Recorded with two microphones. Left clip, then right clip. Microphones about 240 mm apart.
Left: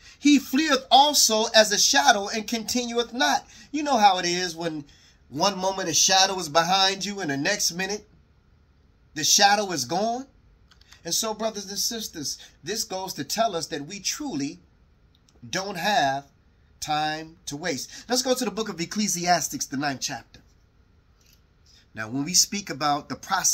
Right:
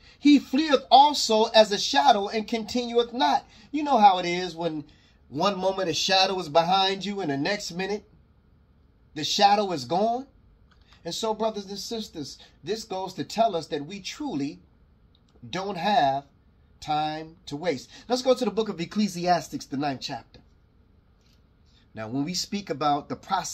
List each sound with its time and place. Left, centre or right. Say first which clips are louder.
0.0 s a sound: even; centre
0.8 s speech: right 1 dB; centre
9.1 s speech: left 1 dB; centre
21.7 s speech: left 1 dB; centre